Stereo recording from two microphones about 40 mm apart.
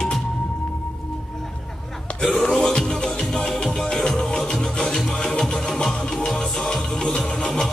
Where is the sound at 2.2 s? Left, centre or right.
Centre.